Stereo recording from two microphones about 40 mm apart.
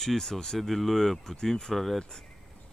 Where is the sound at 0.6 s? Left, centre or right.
Centre.